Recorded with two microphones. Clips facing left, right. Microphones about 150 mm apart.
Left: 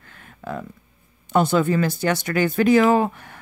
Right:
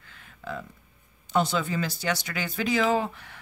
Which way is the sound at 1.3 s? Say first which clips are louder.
Left 7 dB; 55° left (ahead or behind).